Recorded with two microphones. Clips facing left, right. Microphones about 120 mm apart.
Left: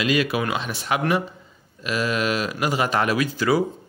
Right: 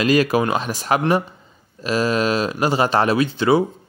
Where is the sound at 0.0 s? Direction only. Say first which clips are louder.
Right 5 dB; 40° right (ahead or behind); by 3.6 s 25° right (ahead or behind).